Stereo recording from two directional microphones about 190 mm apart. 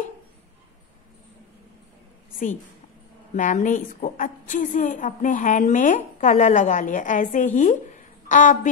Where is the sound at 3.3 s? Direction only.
40° left (ahead or behind).